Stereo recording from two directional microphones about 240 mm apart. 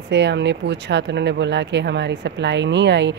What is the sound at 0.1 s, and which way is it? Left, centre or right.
Speech, right.